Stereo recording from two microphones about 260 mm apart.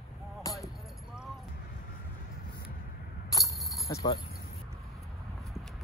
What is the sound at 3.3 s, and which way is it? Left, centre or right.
Keys jangling, centre.